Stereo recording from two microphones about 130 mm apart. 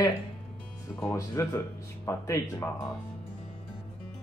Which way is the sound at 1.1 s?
25° left (ahead or behind).